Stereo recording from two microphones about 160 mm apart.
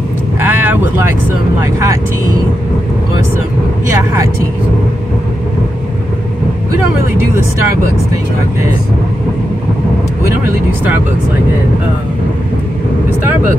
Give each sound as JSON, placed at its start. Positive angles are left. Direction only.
{"t": 0.4, "sound": "vehicle", "side_deg": -15}
{"t": 1.6, "sound": "speech", "side_deg": -20}